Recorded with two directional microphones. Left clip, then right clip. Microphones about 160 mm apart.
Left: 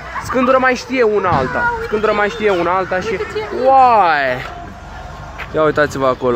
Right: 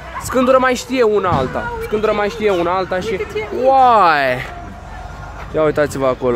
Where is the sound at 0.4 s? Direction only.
25° right (ahead or behind).